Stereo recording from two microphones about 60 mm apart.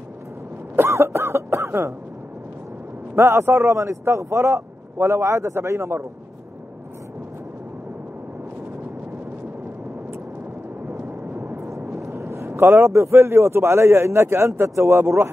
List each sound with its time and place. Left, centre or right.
0.7 s cough: right
3.2 s a man's voice: right
11.3 s a sound: right
12.2 s a man's voice: right